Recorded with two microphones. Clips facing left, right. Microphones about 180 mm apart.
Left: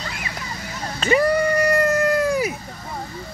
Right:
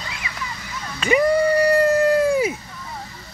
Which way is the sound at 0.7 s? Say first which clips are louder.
Left 2 dB; 40° left (ahead or behind).